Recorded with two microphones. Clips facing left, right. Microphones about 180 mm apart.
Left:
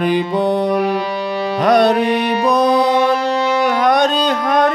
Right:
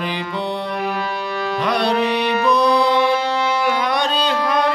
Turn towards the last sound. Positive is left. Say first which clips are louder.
# left 4 dB
turn(degrees=45)  # may be behind; listen again after turning